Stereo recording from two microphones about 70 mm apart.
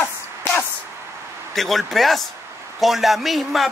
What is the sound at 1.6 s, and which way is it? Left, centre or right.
Speech, centre.